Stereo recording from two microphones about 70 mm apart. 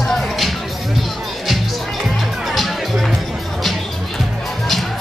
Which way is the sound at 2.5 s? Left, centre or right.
Centre.